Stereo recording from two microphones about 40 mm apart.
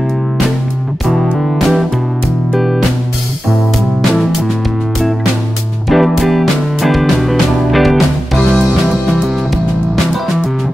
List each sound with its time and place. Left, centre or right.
1.0 s music: centre
5.9 s music: centre
8.5 s music: centre